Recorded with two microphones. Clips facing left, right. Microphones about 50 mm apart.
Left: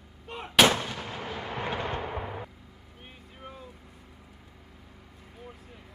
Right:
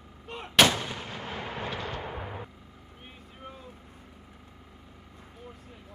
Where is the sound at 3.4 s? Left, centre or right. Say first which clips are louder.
Left 1 dB; centre.